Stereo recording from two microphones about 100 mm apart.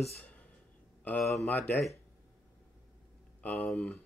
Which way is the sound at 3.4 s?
10° left (ahead or behind).